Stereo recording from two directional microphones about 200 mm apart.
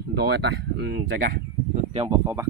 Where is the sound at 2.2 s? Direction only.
15° right (ahead or behind).